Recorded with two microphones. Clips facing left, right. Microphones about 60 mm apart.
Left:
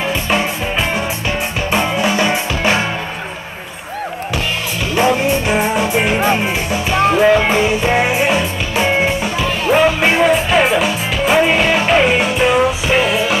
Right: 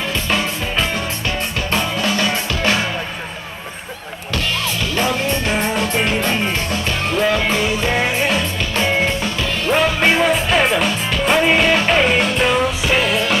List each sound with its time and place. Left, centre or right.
0.0 s music: left
4.9 s music: centre